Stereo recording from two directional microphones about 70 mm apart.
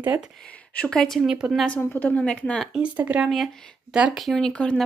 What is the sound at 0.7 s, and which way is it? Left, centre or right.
Speech, centre.